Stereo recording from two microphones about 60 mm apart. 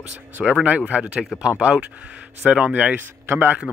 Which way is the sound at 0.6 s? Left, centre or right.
Right.